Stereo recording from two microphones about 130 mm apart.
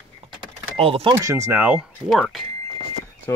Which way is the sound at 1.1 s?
20° right (ahead or behind).